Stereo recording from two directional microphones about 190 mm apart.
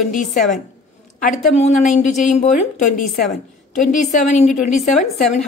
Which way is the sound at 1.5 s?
35° left (ahead or behind).